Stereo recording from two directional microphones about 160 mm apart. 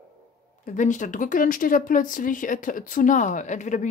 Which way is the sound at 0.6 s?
50° left (ahead or behind).